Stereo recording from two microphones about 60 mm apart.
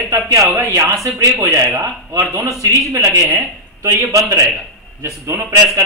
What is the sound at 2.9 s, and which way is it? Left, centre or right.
A man's voice, right.